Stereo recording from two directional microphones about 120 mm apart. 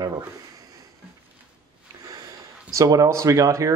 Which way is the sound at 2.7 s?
25° right (ahead or behind).